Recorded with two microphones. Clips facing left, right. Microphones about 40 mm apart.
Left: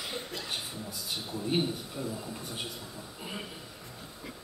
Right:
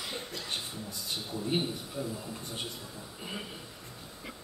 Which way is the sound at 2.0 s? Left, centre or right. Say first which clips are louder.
Right 1 dB; centre.